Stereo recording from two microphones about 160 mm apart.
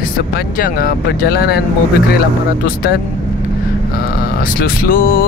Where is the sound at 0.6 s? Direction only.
65° left (ahead or behind).